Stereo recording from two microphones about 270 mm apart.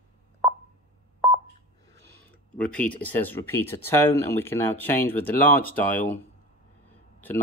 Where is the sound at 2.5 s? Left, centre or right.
Centre.